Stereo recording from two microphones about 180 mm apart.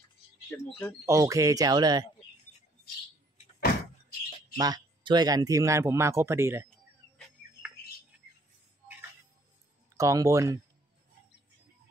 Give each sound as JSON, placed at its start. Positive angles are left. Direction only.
{"t": 0.5, "sound": "speech", "side_deg": 10}
{"t": 1.0, "sound": "speech", "side_deg": -15}
{"t": 4.6, "sound": "speech", "side_deg": -20}
{"t": 9.9, "sound": "speech", "side_deg": -15}